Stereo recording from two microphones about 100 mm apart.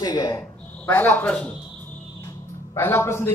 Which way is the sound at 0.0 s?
40° left (ahead or behind).